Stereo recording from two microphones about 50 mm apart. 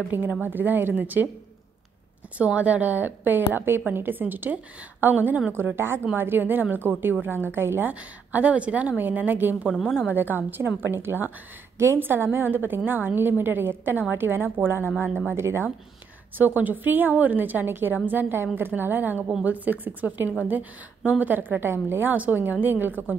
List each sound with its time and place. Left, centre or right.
0.1 s a woman's voice: right
2.3 s a woman's voice: right
5.8 s a woman's voice: right
7.9 s a woman's voice: right
15.3 s speech: right
16.3 s a woman's voice: right
22.1 s a woman's voice: right